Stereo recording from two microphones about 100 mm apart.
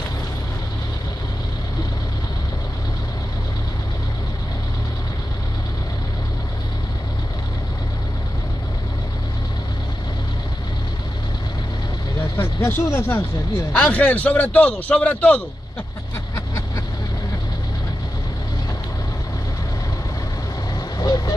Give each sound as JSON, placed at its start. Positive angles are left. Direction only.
{"t": 12.2, "sound": "vehicle", "side_deg": 25}
{"t": 13.7, "sound": "a man's voice", "side_deg": 15}
{"t": 16.3, "sound": "vehicle", "side_deg": 35}